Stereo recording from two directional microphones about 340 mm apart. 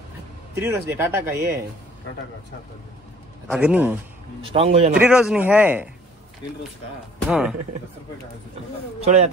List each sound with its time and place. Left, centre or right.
0.6 s speech: centre
3.4 s speech: centre
4.5 s speech: centre
4.9 s speech: centre
7.2 s speech: centre
9.0 s a man's voice: centre